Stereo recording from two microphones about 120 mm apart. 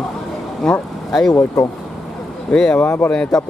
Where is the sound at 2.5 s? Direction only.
10° left (ahead or behind).